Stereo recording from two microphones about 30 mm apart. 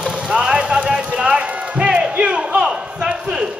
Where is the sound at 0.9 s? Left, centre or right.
Right.